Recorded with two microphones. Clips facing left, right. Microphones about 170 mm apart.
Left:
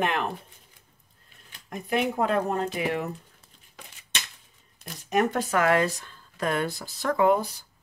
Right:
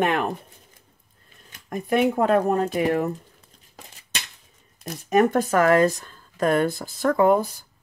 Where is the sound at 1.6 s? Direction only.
50° right (ahead or behind).